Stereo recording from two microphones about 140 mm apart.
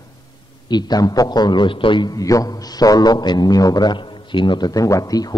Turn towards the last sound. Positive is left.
turn(degrees=25)  # may be behind; listen again after turning